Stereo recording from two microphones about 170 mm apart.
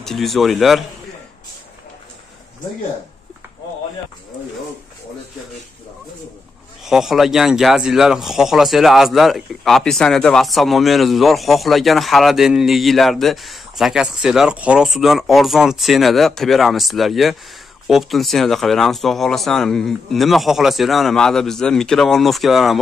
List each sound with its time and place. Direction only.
0.0 s speech: centre (ahead or behind)
6.8 s speech: centre (ahead or behind)